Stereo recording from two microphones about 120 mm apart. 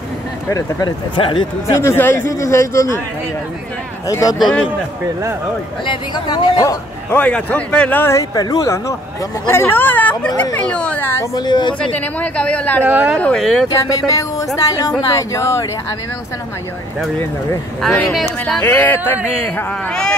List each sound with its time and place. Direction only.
0.5 s speech: 30° left (ahead or behind)
1.7 s speech: 25° left (ahead or behind)
4.1 s speech: 30° left (ahead or behind)
4.4 s speech: 5° left (ahead or behind)
5.9 s speech: 35° left (ahead or behind)
7.1 s speech: 10° left (ahead or behind)
11.3 s speech: 35° left (ahead or behind)
11.8 s speech: 10° left (ahead or behind)
12.8 s speech: 15° right (ahead or behind)
13.2 s speech: 5° left (ahead or behind)
14.1 s speech: 30° left (ahead or behind)
17.8 s speech: 5° left (ahead or behind)